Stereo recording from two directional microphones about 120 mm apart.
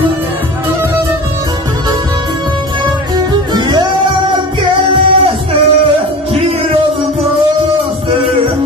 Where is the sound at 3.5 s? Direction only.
35° right (ahead or behind).